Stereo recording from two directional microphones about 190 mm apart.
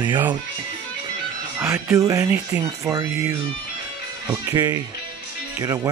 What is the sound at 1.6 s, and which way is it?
Speech, 15° right (ahead or behind).